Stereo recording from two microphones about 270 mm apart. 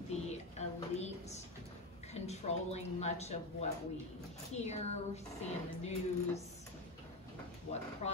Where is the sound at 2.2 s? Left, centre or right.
Left.